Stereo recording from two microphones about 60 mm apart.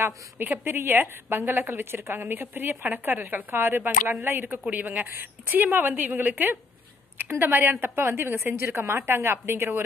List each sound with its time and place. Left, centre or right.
0.0 s a woman's voice: right